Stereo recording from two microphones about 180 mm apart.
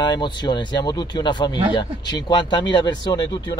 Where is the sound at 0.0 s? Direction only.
25° left (ahead or behind).